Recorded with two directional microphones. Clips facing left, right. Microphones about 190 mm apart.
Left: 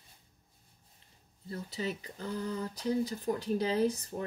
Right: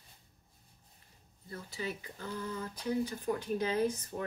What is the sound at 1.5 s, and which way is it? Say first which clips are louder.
Speech: left 3 dB; 35° left (ahead or behind).